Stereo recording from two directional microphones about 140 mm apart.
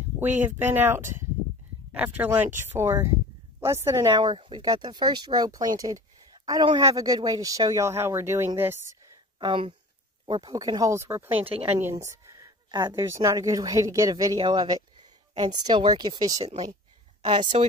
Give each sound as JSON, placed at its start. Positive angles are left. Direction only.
{"t": 0.2, "sound": "a woman's voice", "side_deg": -15}
{"t": 9.4, "sound": "a woman's voice", "side_deg": -35}
{"t": 17.2, "sound": "speech", "side_deg": -45}